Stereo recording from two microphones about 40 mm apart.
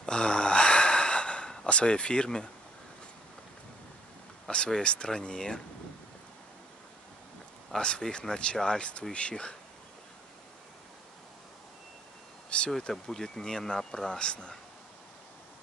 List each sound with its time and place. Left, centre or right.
0.0 s sigh: left
1.7 s speech: left
4.5 s speech: left
7.7 s speech: centre
12.4 s a sound: left
12.9 s speech: centre